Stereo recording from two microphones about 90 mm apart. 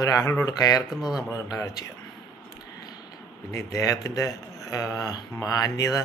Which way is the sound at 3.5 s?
35° left (ahead or behind).